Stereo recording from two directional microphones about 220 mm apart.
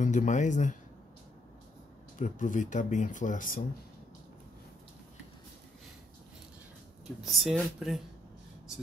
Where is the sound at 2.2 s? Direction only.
35° left (ahead or behind).